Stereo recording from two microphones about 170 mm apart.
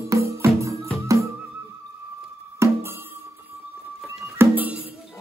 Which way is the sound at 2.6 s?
15° right (ahead or behind).